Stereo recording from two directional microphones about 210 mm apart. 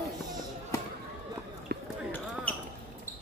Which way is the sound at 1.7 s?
50° right (ahead or behind).